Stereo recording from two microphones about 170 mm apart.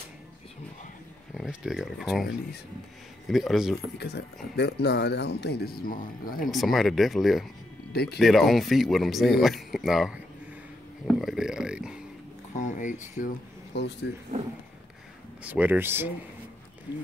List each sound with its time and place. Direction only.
1.3 s speech: 5° right (ahead or behind)
3.3 s speech: centre (ahead or behind)
4.0 s speech: 75° left (ahead or behind)
5.9 s speech: 55° left (ahead or behind)
6.5 s speech: centre (ahead or behind)
7.9 s speech: 70° left (ahead or behind)
8.2 s a man's voice: centre (ahead or behind)
12.5 s speech: 45° left (ahead or behind)
13.7 s speech: 85° left
15.4 s speech: 10° right (ahead or behind)